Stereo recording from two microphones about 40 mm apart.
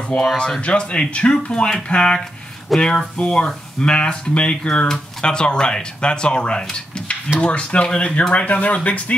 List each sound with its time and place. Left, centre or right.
0.1 s speech: left
2.7 s speech: centre
3.2 s speech: left